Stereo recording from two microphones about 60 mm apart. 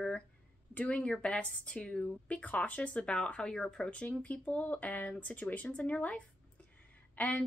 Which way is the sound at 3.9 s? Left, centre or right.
Left.